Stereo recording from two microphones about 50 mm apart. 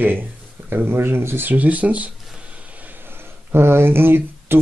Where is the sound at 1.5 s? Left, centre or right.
Right.